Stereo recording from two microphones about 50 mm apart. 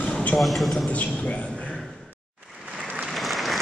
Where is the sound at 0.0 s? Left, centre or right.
Left.